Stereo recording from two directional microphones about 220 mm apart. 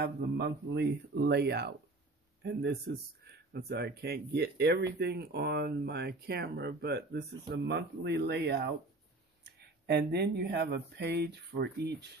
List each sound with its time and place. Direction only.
0.0 s speech: 45° right (ahead or behind)